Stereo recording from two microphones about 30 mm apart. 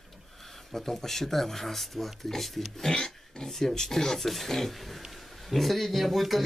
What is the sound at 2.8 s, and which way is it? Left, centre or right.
Speech, left.